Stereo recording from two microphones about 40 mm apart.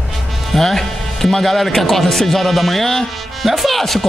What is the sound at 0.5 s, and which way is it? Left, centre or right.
A man's voice, centre.